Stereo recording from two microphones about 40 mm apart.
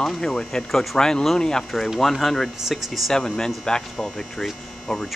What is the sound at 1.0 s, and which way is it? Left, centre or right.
Speech, centre.